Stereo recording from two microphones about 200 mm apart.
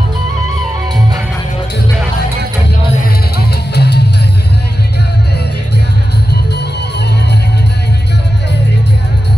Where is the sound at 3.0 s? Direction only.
50° left (ahead or behind).